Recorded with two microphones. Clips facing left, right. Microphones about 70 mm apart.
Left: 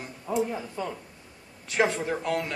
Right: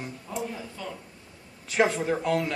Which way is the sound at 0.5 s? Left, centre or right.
Left.